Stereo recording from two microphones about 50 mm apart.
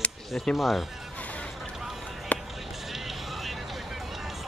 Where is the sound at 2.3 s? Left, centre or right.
Left.